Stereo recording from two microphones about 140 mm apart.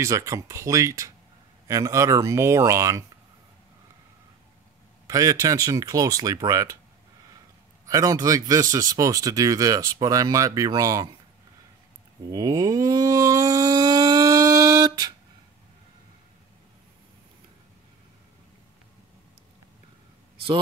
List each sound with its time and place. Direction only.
0.0 s speech: 20° right (ahead or behind)
5.0 s speech: 25° right (ahead or behind)
7.8 s speech: 25° right (ahead or behind)
12.3 s a sound: 25° right (ahead or behind)